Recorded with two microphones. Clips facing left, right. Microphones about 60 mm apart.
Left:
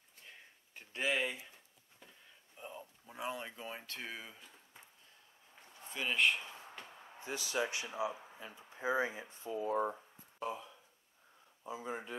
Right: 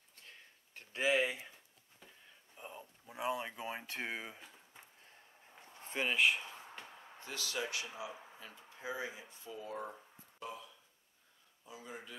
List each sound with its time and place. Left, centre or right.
0.7 s speech: centre
2.5 s a sound: centre
3.7 s speech: right
5.8 s a sound: right
6.0 s speech: centre
7.2 s speech: centre
8.8 s speech: left